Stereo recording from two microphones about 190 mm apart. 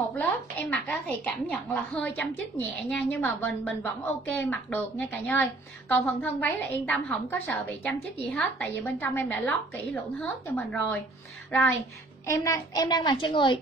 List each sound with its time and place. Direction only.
0.1 s speech: 10° left (ahead or behind)
12.3 s a child's voice: 15° left (ahead or behind)